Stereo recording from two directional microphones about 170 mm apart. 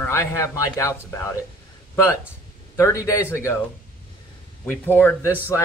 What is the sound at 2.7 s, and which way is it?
Speech, 20° left (ahead or behind).